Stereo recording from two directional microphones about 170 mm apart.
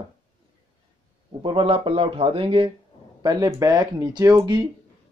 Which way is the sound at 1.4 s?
30° right (ahead or behind).